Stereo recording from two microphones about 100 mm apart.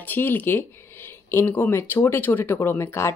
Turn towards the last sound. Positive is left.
turn(degrees=30)  # may be behind; listen again after turning